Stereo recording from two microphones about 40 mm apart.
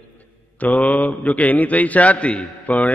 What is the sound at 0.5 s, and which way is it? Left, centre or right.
A man's voice, left.